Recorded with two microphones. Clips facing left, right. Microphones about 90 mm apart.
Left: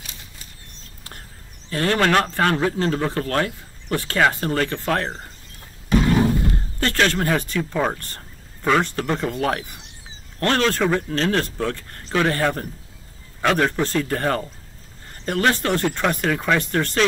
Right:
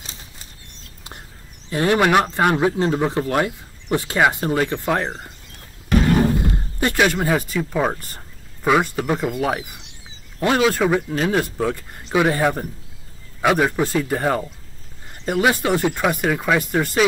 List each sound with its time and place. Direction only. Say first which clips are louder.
1.7 s speech: right 2 dB; 15° right (ahead or behind)
6.8 s speech: right 2 dB; 10° right (ahead or behind)